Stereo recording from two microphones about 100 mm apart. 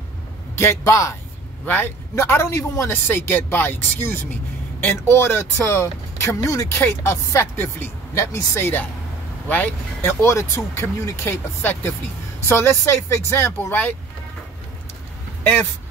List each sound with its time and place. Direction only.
0.6 s a man's voice: 25° left (ahead or behind)
6.4 s a man's voice: 35° left (ahead or behind); by 10.1 s 15° left (ahead or behind)
10.2 s a man's voice: 30° left (ahead or behind)